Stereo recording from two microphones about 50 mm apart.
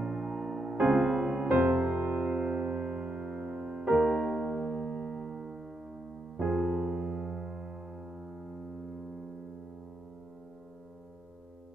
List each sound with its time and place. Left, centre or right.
0.0 s music: centre
1.5 s music: right
4.2 s music: centre
6.3 s piano: centre